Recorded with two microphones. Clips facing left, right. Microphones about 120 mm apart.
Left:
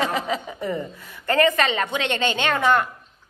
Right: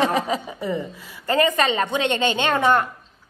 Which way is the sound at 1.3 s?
20° right (ahead or behind).